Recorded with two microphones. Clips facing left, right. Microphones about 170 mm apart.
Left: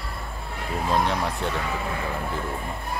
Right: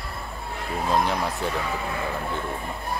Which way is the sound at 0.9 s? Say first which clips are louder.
Even; centre (ahead or behind).